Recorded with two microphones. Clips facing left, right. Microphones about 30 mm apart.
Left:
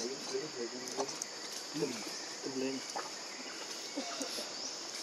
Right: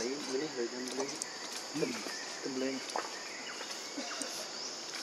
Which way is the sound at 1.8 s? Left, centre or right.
Right.